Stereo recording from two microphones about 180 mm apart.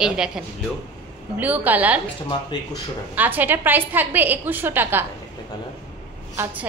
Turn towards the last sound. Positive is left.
turn(degrees=-15)  # may be behind; listen again after turning